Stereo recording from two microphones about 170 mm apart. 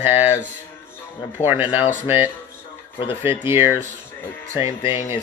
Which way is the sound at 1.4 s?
10° right (ahead or behind).